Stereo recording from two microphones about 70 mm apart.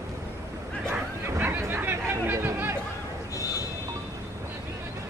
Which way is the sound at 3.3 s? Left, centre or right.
Left.